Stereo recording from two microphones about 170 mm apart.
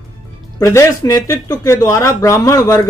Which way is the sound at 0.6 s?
15° left (ahead or behind).